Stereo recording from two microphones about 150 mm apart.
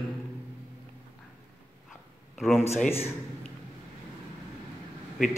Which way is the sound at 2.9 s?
15° left (ahead or behind).